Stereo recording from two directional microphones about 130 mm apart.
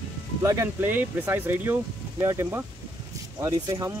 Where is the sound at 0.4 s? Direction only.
20° right (ahead or behind).